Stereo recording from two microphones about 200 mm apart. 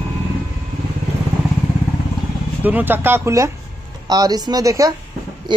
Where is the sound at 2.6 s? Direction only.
10° right (ahead or behind).